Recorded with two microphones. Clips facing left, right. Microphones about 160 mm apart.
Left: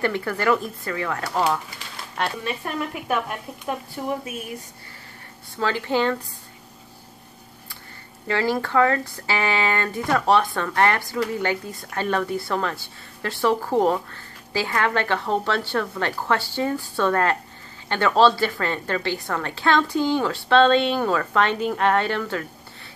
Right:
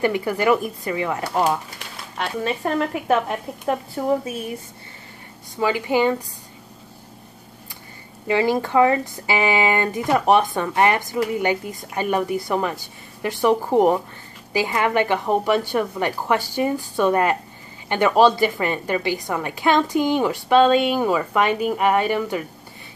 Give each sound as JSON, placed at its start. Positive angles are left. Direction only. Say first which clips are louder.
{"t": 0.0, "sound": "speech", "louder": "right 3 dB", "side_deg": -15}
{"t": 3.1, "sound": "a woman's voice", "louder": "right 5 dB", "side_deg": -30}
{"t": 5.6, "sound": "speech", "louder": "right 3 dB", "side_deg": -15}
{"t": 8.3, "sound": "speech", "louder": "right 3 dB", "side_deg": -15}